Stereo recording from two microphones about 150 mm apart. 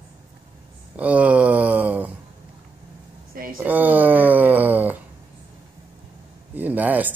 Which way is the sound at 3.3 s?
70° right (ahead or behind).